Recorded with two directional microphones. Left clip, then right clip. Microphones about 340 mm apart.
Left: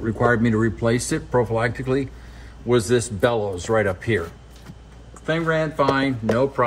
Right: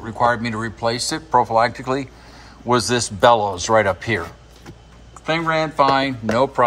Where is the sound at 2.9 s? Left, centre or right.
Centre.